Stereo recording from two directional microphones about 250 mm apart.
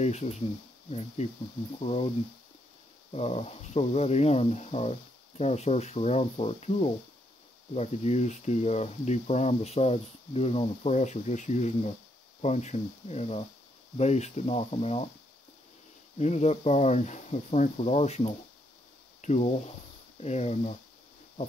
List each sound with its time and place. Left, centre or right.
0.0 s speech: left
16.2 s speech: left